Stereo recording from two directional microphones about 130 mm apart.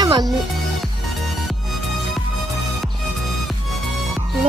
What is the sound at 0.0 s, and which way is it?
Music, 30° right (ahead or behind).